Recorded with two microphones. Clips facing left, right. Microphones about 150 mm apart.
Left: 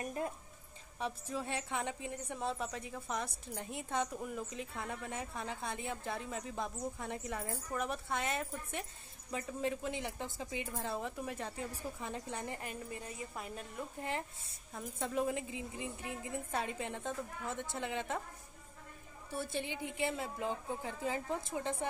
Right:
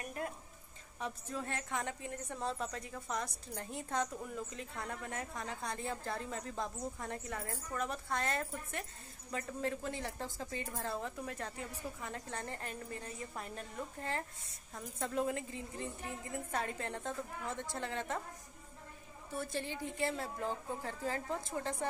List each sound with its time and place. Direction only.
0.9 s a woman's voice: 15° left (ahead or behind)
19.5 s a woman's voice: 20° left (ahead or behind)